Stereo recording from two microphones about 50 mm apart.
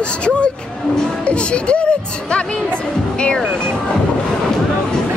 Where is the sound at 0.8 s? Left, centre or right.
Centre.